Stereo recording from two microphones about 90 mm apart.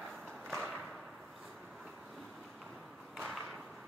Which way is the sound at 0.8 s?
Centre (ahead or behind).